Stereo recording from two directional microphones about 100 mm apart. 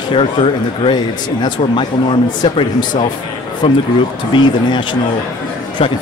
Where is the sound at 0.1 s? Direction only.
65° left (ahead or behind).